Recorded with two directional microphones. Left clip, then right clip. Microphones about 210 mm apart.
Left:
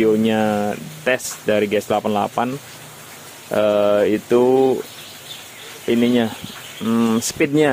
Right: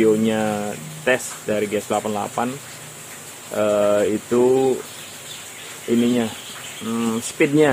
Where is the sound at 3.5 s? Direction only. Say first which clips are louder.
Left 2 dB; 40° left (ahead or behind).